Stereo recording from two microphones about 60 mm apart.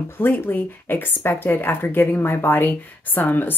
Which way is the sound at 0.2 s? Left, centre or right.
Left.